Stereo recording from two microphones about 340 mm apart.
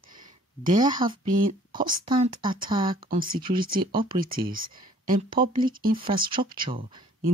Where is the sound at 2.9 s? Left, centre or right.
Right.